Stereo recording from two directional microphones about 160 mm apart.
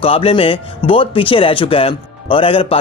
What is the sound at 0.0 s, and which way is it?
Speech, 35° left (ahead or behind).